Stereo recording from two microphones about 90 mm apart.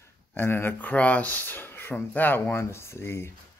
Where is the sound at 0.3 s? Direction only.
25° left (ahead or behind).